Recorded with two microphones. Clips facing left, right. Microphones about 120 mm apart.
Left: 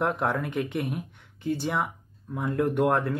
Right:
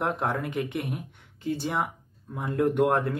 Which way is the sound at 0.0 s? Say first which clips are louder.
Left 1 dB; 25° right (ahead or behind).